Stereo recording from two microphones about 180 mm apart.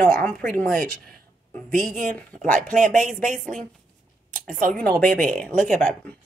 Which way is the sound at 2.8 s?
45° right (ahead or behind).